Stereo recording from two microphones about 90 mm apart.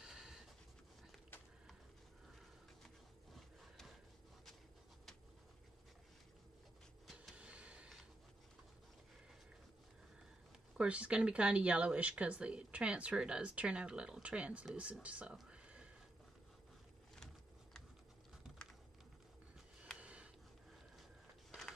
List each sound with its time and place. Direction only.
0.0 s a sound: 5° right (ahead or behind)
3.3 s wood: centre (ahead or behind)
7.3 s vehicle: 15° right (ahead or behind)
10.8 s speech: 15° right (ahead or behind)
15.3 s whispering: 10° right (ahead or behind)
20.0 s a sound: 15° right (ahead or behind)